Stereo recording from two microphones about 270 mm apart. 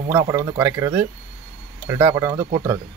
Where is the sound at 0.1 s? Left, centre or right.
Centre.